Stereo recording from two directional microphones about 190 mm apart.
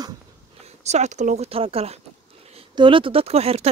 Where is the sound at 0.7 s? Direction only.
35° right (ahead or behind).